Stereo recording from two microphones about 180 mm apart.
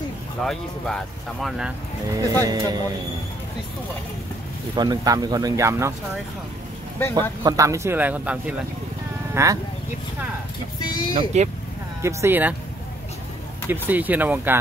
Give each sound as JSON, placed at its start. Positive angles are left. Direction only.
{"t": 0.4, "sound": "speech", "side_deg": 5}
{"t": 2.2, "sound": "speech", "side_deg": -20}
{"t": 4.7, "sound": "speech", "side_deg": -20}
{"t": 7.2, "sound": "speech", "side_deg": -20}
{"t": 11.3, "sound": "speech", "side_deg": -40}
{"t": 12.0, "sound": "speech", "side_deg": -15}
{"t": 13.7, "sound": "speech", "side_deg": -10}